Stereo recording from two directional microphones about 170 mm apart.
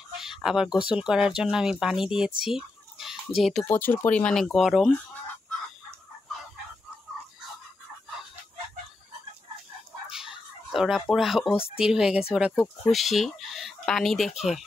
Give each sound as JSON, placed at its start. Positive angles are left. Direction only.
{"t": 0.2, "sound": "speech", "side_deg": -5}
{"t": 2.4, "sound": "chicken", "side_deg": -5}
{"t": 3.3, "sound": "speech", "side_deg": 0}
{"t": 3.6, "sound": "speech", "side_deg": 10}
{"t": 10.1, "sound": "a sound", "side_deg": 0}
{"t": 11.1, "sound": "speech", "side_deg": 0}
{"t": 11.5, "sound": "speech", "side_deg": 35}
{"t": 11.8, "sound": "speech", "side_deg": -5}